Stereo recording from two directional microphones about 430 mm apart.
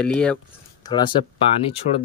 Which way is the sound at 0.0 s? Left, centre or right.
Centre.